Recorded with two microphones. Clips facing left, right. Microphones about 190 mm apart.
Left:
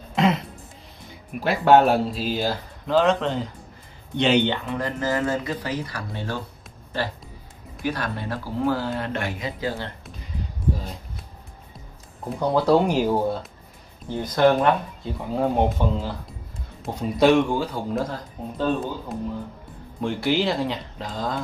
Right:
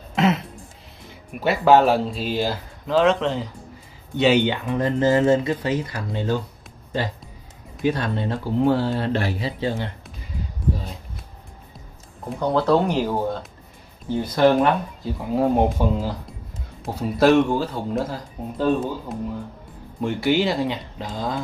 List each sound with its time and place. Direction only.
0.1 s music: 5° right (ahead or behind)
1.4 s speech: centre (ahead or behind)
4.6 s speech: 25° right (ahead or behind)
7.8 s speech: 25° right (ahead or behind)
12.4 s speech: 10° left (ahead or behind)
14.2 s speech: 5° right (ahead or behind)